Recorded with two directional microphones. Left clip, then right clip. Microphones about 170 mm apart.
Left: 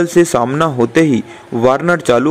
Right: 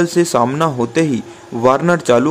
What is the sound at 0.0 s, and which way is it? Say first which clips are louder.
A man's voice: left 2 dB; 20° left (ahead or behind).